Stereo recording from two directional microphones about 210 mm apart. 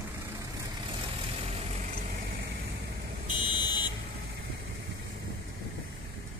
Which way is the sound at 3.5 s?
20° left (ahead or behind).